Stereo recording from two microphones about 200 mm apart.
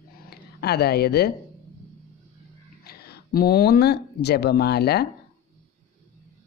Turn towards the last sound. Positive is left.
turn(degrees=55)  # may be behind; listen again after turning